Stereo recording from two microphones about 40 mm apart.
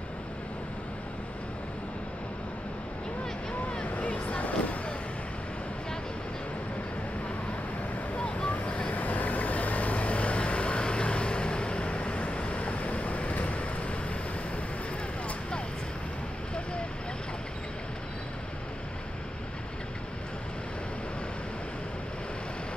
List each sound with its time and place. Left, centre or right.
3.8 s music: left
8.5 s vehicle: left